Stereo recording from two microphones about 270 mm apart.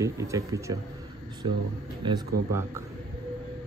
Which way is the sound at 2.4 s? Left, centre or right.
Right.